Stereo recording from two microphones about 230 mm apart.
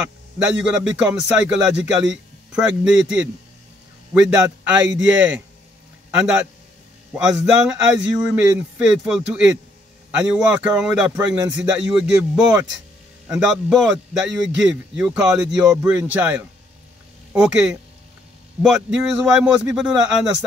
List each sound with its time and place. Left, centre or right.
0.4 s a man's voice: centre
11.1 s speech: centre
11.5 s a man's voice: centre